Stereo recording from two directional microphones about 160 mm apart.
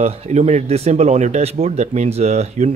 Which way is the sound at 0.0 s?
40° right (ahead or behind).